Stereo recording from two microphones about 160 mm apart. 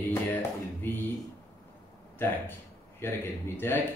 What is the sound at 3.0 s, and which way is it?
Speech, 15° left (ahead or behind).